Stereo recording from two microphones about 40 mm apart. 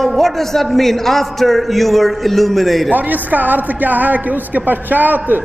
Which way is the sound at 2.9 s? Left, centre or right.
Right.